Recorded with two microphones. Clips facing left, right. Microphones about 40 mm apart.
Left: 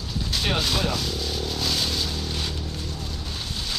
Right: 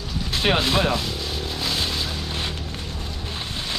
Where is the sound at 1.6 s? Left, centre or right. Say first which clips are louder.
Right 2 dB; right.